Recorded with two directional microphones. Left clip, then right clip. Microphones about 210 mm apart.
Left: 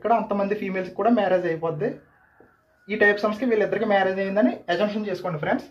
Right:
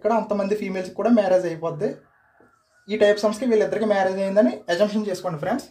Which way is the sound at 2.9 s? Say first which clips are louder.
Right 2 dB; 50° right (ahead or behind).